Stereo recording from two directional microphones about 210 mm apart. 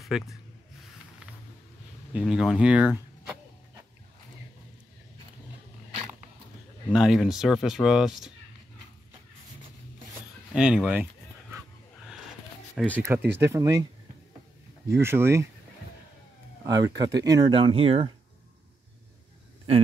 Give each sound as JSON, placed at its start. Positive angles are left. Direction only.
{"t": 0.0, "sound": "speech", "side_deg": 0}
{"t": 2.1, "sound": "speech", "side_deg": -5}
{"t": 6.9, "sound": "speech", "side_deg": 0}
{"t": 10.5, "sound": "speech", "side_deg": -5}
{"t": 12.7, "sound": "speech", "side_deg": 5}
{"t": 13.0, "sound": "speech", "side_deg": -10}
{"t": 14.9, "sound": "speech", "side_deg": -10}
{"t": 16.6, "sound": "speech", "side_deg": -15}